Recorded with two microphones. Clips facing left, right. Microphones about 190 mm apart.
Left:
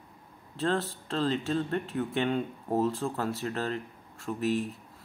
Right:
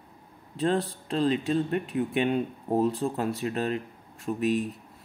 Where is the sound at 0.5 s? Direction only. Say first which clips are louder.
Right 3 dB; 15° right (ahead or behind).